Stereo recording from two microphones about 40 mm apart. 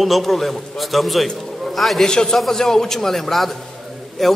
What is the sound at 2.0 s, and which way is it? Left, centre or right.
A man's voice, centre.